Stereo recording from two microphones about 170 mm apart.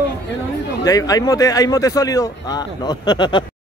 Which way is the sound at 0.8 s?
20° left (ahead or behind).